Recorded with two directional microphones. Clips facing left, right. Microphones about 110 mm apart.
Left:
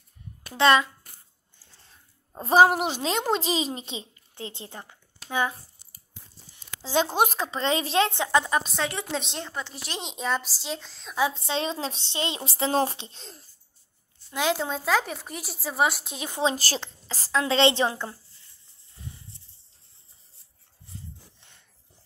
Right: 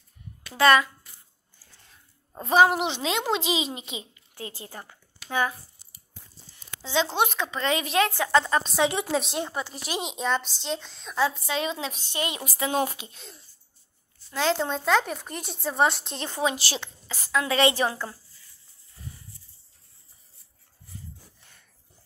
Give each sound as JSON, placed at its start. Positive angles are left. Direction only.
{"t": 0.6, "sound": "a woman's voice", "side_deg": 25}
{"t": 1.6, "sound": "a sound", "side_deg": 25}
{"t": 2.9, "sound": "a woman's voice", "side_deg": 40}
{"t": 6.8, "sound": "a woman's voice", "side_deg": 45}
{"t": 8.3, "sound": "a woman's voice", "side_deg": 15}
{"t": 9.0, "sound": "a woman's voice", "side_deg": -5}
{"t": 11.3, "sound": "a woman's voice", "side_deg": 30}
{"t": 14.3, "sound": "a woman's voice", "side_deg": 10}
{"t": 16.5, "sound": "a woman's voice", "side_deg": 40}
{"t": 21.4, "sound": "wheeze", "side_deg": 20}